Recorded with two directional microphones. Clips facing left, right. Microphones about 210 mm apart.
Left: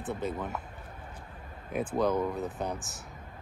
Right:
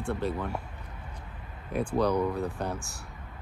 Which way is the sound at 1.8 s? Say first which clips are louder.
Right 2 dB; 20° left (ahead or behind).